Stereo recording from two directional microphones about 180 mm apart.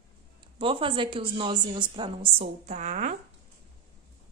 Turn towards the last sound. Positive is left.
turn(degrees=-45)  # may be behind; listen again after turning